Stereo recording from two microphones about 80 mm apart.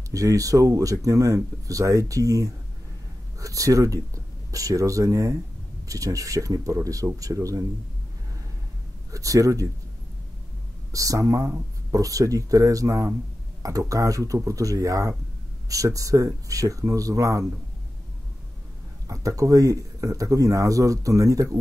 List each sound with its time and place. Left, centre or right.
0.1 s speech: right
9.1 s speech: right
10.9 s speech: right
19.0 s speech: right